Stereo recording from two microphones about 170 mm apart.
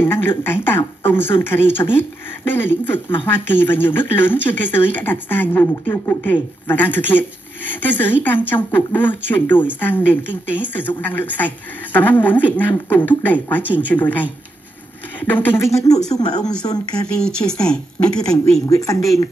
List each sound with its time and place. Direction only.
0.0 s speech: 10° left (ahead or behind)
16.9 s speech: 5° left (ahead or behind)
18.7 s speech: 20° left (ahead or behind)